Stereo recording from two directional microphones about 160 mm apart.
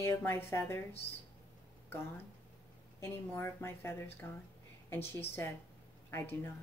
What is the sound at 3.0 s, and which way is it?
A woman's voice, 15° left (ahead or behind).